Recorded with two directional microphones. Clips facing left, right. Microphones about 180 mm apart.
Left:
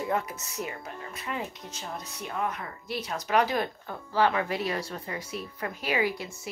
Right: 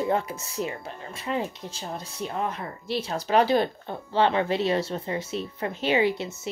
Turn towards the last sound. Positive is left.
turn(degrees=-25)  # may be behind; listen again after turning